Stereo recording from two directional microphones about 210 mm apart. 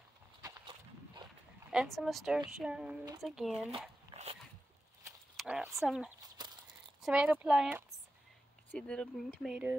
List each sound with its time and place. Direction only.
0.4 s horse: 20° right (ahead or behind)
1.7 s speech: centre (ahead or behind)
4.1 s a sound: 25° right (ahead or behind)
5.3 s speech: 5° right (ahead or behind)